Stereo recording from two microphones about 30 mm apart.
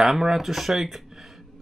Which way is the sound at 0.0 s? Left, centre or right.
Centre.